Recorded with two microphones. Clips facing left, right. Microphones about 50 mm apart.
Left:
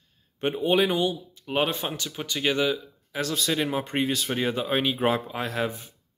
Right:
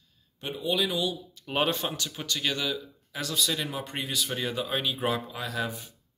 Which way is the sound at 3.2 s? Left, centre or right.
Left.